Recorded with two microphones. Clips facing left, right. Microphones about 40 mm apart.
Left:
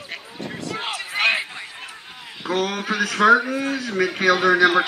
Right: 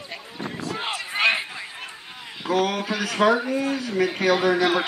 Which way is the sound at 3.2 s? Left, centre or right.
Left.